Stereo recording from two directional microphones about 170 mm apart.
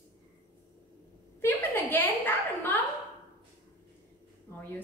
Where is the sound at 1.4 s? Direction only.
10° left (ahead or behind).